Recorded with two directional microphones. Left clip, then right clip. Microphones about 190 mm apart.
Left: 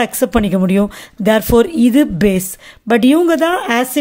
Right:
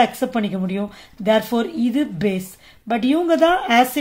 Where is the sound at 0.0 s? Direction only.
55° left (ahead or behind).